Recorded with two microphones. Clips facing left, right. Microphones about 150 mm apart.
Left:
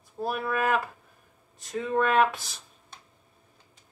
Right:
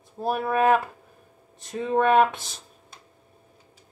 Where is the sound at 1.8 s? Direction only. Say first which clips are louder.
Right 4 dB; 25° right (ahead or behind).